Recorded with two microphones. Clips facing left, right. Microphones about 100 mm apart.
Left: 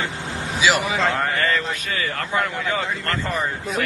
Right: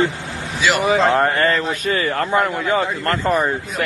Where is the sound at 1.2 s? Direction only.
40° right (ahead or behind).